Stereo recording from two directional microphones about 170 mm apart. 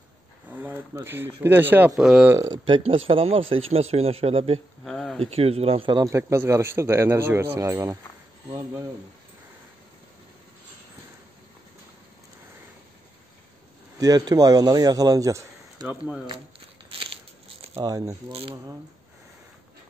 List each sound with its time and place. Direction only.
0.5 s a man's voice: 10° right (ahead or behind)
2.3 s a man's voice: 20° right (ahead or behind)
2.6 s speech: 30° right (ahead or behind)
4.8 s a sound: 5° left (ahead or behind)
5.2 s a man's voice: 35° right (ahead or behind); by 8.8 s 20° right (ahead or behind)
13.9 s a man's voice: 20° right (ahead or behind)
16.3 s crumpling: 30° right (ahead or behind)
17.7 s a man's voice: 20° right (ahead or behind)
18.3 s speech: 30° right (ahead or behind)